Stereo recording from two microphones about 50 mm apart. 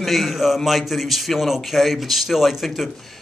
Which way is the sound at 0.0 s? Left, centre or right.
Centre.